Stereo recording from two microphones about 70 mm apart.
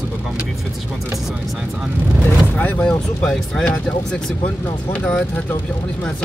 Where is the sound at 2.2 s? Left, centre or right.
Left.